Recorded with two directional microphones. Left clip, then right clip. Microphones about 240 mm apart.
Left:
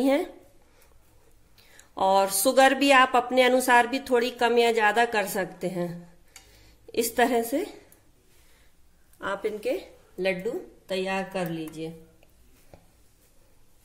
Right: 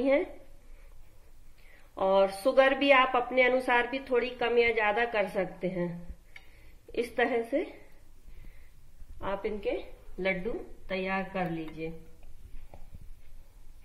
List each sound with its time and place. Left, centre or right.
2.0 s speech: left
6.9 s speech: left
9.2 s a woman's voice: left